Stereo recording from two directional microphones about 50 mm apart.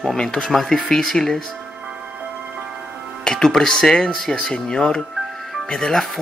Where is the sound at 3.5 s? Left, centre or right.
Centre.